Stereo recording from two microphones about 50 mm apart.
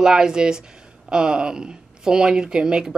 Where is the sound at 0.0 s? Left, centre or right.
Centre.